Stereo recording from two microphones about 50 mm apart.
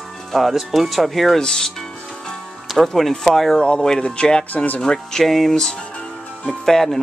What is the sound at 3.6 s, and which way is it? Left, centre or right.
Speech, centre.